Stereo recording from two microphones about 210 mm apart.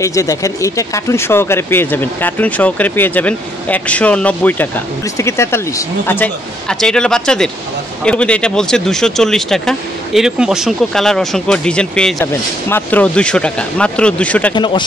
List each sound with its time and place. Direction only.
0.0 s speech: 15° left (ahead or behind)
14.5 s speech: 20° left (ahead or behind)